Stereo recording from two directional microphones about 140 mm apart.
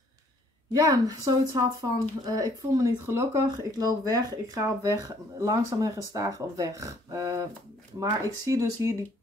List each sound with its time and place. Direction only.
0.7 s speech: 25° right (ahead or behind)